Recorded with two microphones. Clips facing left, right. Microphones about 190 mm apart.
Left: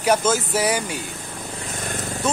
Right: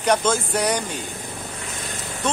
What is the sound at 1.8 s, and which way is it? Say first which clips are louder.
Vehicle: left 8 dB; 50° left (ahead or behind).